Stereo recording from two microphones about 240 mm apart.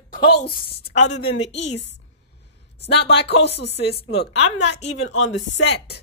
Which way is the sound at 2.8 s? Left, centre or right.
Left.